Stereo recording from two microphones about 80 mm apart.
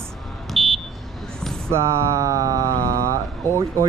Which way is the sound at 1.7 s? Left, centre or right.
Right.